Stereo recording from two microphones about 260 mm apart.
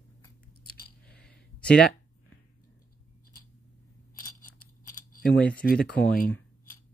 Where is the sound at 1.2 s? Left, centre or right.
Centre.